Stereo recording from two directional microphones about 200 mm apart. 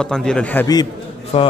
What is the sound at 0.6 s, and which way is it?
Speech, 20° left (ahead or behind).